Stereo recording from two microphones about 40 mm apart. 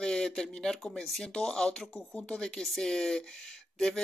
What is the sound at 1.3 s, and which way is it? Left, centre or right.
Speech, centre.